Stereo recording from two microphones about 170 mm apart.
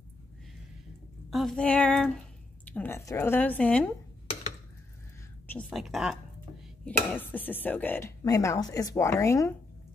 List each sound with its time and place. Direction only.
1.3 s speech: centre (ahead or behind)
5.7 s speech: centre (ahead or behind)
6.8 s speech: 10° left (ahead or behind)